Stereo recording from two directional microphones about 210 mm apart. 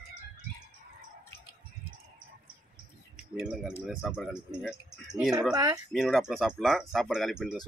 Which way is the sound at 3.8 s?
Centre (ahead or behind).